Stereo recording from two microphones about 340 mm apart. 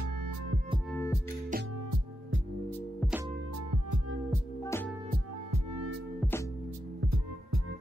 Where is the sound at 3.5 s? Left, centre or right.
Right.